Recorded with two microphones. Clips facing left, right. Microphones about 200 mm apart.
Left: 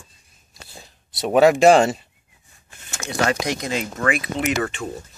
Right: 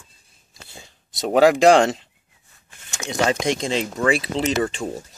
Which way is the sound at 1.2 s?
90° right.